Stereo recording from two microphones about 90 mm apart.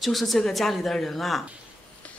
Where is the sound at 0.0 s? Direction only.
Centre (ahead or behind).